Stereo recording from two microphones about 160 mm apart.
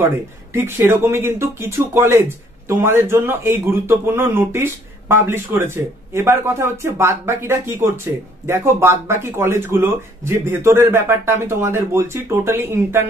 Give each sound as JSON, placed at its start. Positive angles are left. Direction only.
{"t": 0.5, "sound": "speech", "side_deg": -15}